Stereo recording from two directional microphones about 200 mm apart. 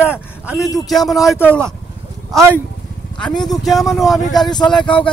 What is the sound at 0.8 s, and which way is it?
Speech, centre (ahead or behind).